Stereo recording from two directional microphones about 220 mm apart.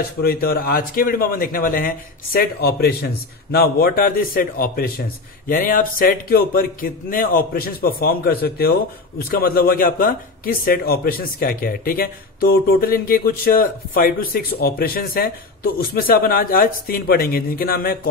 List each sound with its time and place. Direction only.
0.2 s a man's voice: 45° left (ahead or behind)